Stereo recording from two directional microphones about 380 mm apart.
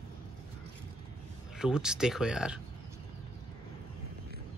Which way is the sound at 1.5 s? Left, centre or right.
Centre.